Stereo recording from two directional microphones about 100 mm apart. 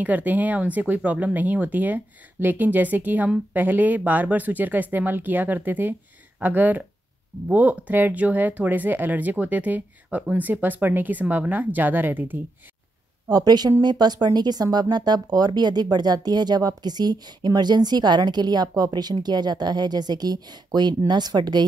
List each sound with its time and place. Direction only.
0.0 s speech: 15° right (ahead or behind)
13.3 s speech: 40° right (ahead or behind)